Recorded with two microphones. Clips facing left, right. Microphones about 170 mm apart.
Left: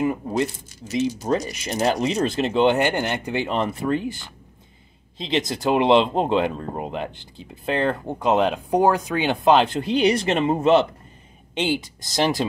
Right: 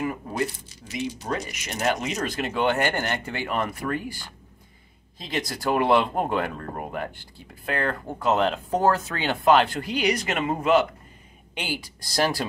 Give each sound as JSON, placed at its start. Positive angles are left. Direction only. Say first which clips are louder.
{"t": 1.4, "sound": "speech", "louder": "left 5 dB", "side_deg": 35}